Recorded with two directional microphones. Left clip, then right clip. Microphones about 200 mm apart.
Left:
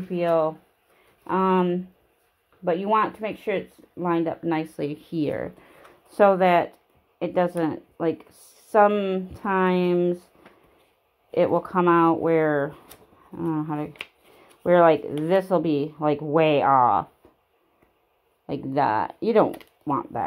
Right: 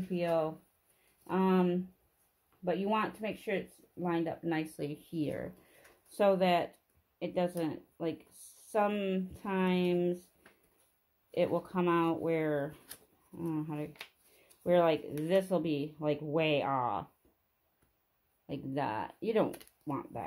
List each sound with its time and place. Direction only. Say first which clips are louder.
0.1 s speech: left 10 dB; 25° left (ahead or behind)
11.3 s speech: left 11 dB; 30° left (ahead or behind)
18.5 s speech: left 13 dB; 25° left (ahead or behind)